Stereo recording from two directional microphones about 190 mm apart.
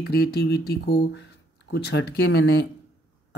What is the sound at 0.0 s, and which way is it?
Speech, 55° left (ahead or behind).